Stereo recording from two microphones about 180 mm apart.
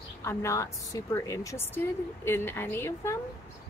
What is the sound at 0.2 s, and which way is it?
Speech, 15° left (ahead or behind).